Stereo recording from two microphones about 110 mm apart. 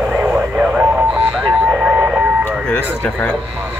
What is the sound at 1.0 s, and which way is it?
Radio, 5° right (ahead or behind).